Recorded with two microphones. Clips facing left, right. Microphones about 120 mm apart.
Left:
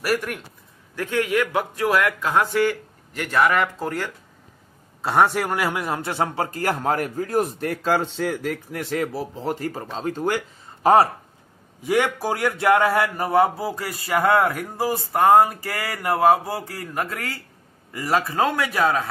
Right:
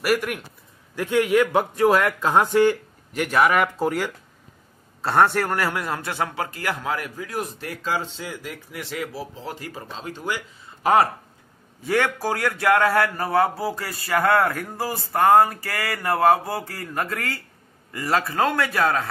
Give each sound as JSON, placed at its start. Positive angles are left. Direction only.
{"t": 0.0, "sound": "a man's voice", "side_deg": -5}
{"t": 0.9, "sound": "speech", "side_deg": -15}
{"t": 5.0, "sound": "a man's voice", "side_deg": 10}
{"t": 10.8, "sound": "speech", "side_deg": 30}
{"t": 11.8, "sound": "a man's voice", "side_deg": 15}